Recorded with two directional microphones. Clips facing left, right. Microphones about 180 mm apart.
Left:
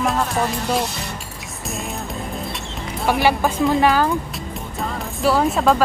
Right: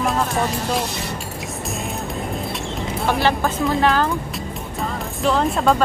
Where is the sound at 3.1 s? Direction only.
10° left (ahead or behind).